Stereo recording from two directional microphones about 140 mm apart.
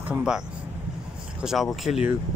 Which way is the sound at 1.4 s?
Centre (ahead or behind).